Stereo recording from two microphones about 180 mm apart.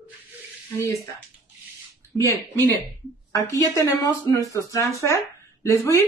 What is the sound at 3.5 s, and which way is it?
Speech, 20° left (ahead or behind).